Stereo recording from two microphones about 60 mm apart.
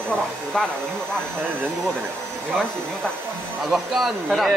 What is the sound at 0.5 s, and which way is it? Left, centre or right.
Speech, centre.